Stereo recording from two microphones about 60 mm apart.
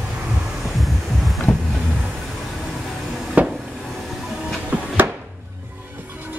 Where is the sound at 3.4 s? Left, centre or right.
Right.